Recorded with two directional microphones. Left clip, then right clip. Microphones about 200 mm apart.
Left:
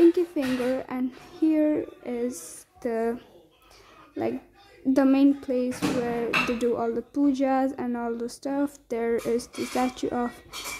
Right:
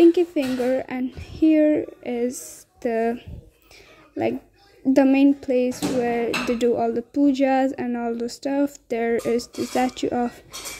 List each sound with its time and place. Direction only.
0.1 s speech: 20° right (ahead or behind)
4.9 s speech: 20° right (ahead or behind)